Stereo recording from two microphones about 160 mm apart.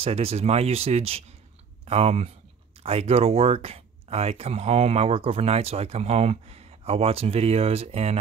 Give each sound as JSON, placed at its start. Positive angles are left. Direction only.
{"t": 0.0, "sound": "speech", "side_deg": -40}